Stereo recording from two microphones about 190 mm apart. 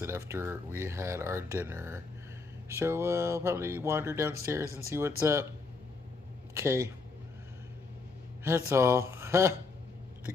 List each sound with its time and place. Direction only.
0.0 s speech: 15° right (ahead or behind)
6.5 s speech: 15° right (ahead or behind)
8.5 s speech: 15° right (ahead or behind)